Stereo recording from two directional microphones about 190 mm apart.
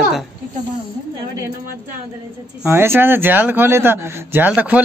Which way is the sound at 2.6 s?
10° right (ahead or behind).